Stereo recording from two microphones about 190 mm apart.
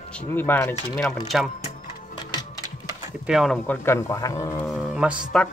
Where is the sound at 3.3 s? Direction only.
Centre (ahead or behind); by 4.6 s 15° left (ahead or behind).